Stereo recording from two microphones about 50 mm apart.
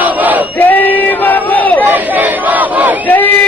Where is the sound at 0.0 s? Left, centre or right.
Right.